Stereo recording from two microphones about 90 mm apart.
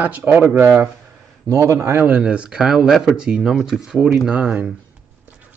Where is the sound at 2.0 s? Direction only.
15° right (ahead or behind).